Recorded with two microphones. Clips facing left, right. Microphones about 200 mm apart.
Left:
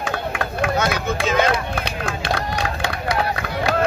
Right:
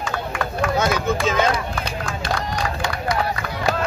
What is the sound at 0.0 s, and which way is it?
Run, 60° left (ahead or behind).